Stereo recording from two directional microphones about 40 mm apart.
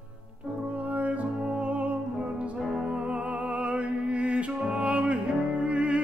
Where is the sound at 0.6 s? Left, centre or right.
Right.